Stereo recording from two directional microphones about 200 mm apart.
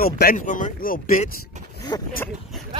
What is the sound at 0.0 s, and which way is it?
Speech, 45° left (ahead or behind).